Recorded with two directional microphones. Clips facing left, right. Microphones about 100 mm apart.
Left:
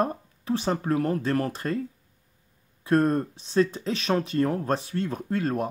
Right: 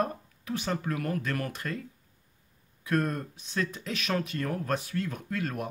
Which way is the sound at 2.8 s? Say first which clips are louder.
Left 7 dB; 30° left (ahead or behind).